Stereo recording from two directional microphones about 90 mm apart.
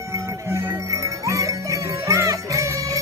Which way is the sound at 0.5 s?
35° right (ahead or behind).